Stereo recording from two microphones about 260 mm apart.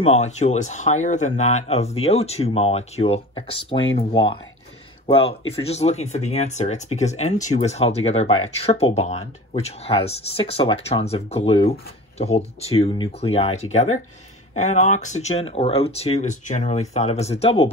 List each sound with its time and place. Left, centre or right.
0.0 s speech: left